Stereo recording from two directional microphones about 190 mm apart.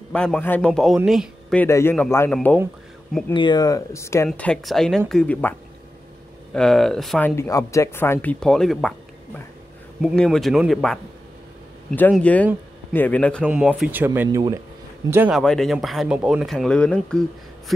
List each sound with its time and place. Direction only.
0.1 s speech: 5° left (ahead or behind)
1.6 s speech: 15° left (ahead or behind)
3.3 s speech: 20° left (ahead or behind)
4.3 s speech: 5° left (ahead or behind)
6.5 s speech: 5° left (ahead or behind)
12.1 s speech: 5° left (ahead or behind)
13.5 s speech: 5° right (ahead or behind)
15.3 s speech: centre (ahead or behind)